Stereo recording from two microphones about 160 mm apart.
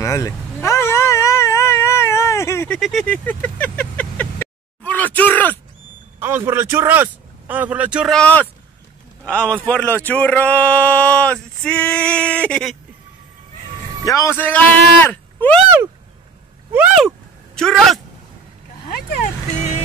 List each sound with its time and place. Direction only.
0.0 s vehicle: 20° left (ahead or behind)
2.8 s vehicle: 5° left (ahead or behind)
6.1 s speech: 15° right (ahead or behind)
8.2 s speech: 10° left (ahead or behind)
14.0 s speech: 20° left (ahead or behind)
16.7 s a sound: 5° right (ahead or behind)
17.6 s speech: centre (ahead or behind)